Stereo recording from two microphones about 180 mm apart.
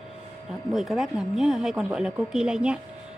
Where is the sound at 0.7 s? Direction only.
Centre (ahead or behind).